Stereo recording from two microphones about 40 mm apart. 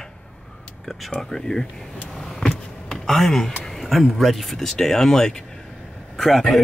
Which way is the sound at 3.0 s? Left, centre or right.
Centre.